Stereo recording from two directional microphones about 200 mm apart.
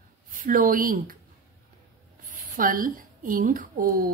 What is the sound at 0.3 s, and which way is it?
Speech, 45° right (ahead or behind).